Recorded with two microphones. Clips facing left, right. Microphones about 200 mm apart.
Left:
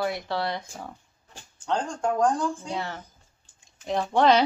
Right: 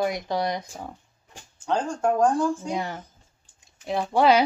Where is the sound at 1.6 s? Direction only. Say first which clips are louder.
Right 3 dB; 5° right (ahead or behind).